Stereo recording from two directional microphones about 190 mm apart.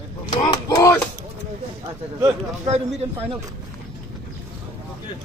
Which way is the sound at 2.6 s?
35° right (ahead or behind).